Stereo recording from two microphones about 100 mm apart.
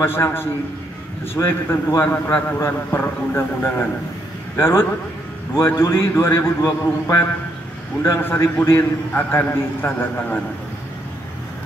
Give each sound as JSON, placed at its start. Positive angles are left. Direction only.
{"t": 0.0, "sound": "a man's voice", "side_deg": 25}